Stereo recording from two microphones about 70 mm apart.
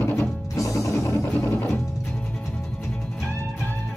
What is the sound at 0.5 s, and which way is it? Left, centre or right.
Music, left.